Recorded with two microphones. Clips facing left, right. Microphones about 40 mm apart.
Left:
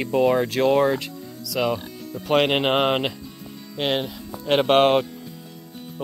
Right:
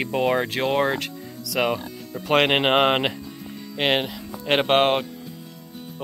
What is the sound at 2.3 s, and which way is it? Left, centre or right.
Speech, right.